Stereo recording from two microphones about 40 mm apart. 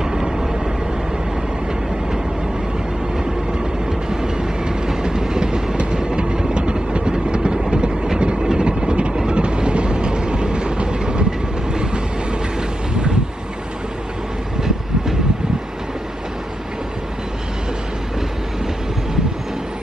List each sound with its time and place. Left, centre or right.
0.1 s vehicle: centre
4.1 s train: centre
7.7 s vehicle: right
11.7 s train: right